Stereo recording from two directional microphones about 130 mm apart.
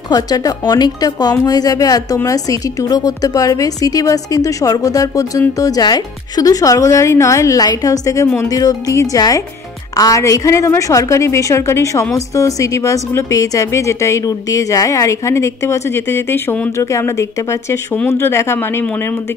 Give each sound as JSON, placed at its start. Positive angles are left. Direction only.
{"t": 0.1, "sound": "speech", "side_deg": 30}